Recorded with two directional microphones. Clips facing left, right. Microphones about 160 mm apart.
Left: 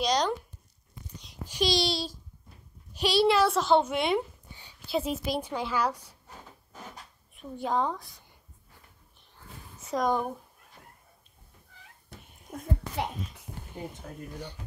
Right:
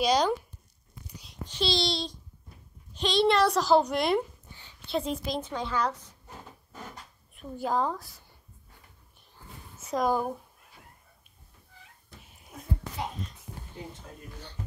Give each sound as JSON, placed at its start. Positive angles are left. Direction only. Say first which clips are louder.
{"t": 0.0, "sound": "a child's voice", "louder": "right 2 dB", "side_deg": -5}
{"t": 1.1, "sound": "a sound", "louder": "even", "side_deg": 0}
{"t": 1.4, "sound": "a woman's voice", "louder": "left 2 dB", "side_deg": 10}
{"t": 4.5, "sound": "a sound", "louder": "left 1 dB", "side_deg": 15}
{"t": 4.8, "sound": "a woman's voice", "louder": "left 1 dB", "side_deg": 5}
{"t": 7.3, "sound": "a child's voice", "louder": "even", "side_deg": 0}
{"t": 9.8, "sound": "speech", "louder": "right 1 dB", "side_deg": 0}